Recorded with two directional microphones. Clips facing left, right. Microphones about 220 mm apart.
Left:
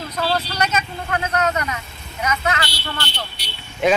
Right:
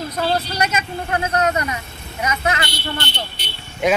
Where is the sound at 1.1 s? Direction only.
30° right (ahead or behind).